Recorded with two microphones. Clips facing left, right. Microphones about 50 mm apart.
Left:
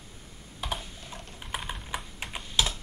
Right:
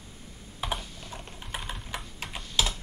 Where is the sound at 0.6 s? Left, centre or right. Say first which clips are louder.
Right 2 dB; centre.